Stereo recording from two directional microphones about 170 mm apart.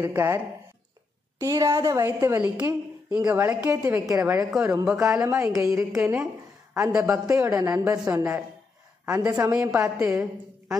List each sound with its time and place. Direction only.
0.0 s a woman's voice: 15° right (ahead or behind)
1.4 s a woman's voice: 20° right (ahead or behind)
5.2 s a woman's voice: 15° right (ahead or behind)